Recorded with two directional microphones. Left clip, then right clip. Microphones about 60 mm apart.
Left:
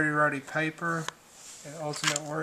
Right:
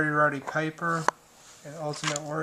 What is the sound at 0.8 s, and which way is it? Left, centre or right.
Speech, centre.